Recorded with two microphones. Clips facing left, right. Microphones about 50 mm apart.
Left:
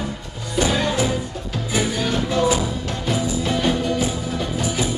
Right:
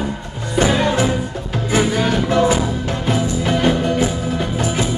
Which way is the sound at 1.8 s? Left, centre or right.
Right.